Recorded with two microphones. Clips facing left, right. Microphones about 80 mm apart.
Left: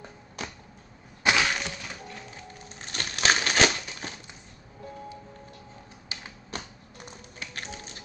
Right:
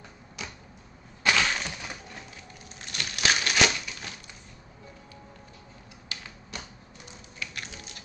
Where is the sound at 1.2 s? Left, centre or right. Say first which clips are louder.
Left 1 dB; centre.